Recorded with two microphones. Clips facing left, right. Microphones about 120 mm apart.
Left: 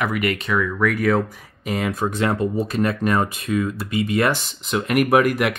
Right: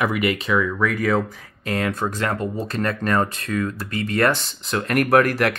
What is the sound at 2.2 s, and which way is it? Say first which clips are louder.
Speech: left 4 dB; 25° left (ahead or behind).